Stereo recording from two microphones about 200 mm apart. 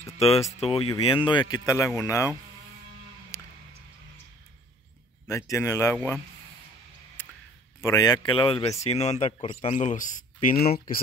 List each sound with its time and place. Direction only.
0.2 s a man's voice: 30° left (ahead or behind); by 2.3 s 15° left (ahead or behind)
3.3 s music: 15° left (ahead or behind)
5.3 s speech: 15° left (ahead or behind)
7.2 s a sound: 10° left (ahead or behind)
7.8 s a man's voice: 15° left (ahead or behind); by 10.5 s 40° left (ahead or behind)